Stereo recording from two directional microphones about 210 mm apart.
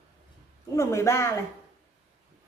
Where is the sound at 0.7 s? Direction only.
10° left (ahead or behind).